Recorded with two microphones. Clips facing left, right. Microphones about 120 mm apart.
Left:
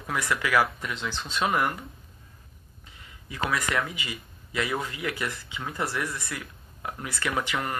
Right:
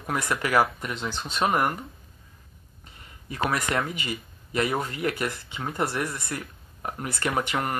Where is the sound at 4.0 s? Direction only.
45° right (ahead or behind).